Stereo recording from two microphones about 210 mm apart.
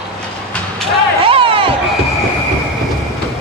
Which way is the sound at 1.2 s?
25° right (ahead or behind).